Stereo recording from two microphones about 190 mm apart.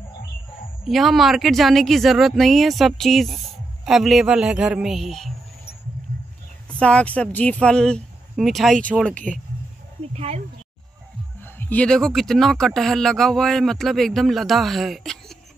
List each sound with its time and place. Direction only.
0.8 s speech: centre (ahead or behind)
6.7 s speech: 5° left (ahead or behind)
10.1 s speech: 35° right (ahead or behind)
11.4 s speech: 10° left (ahead or behind)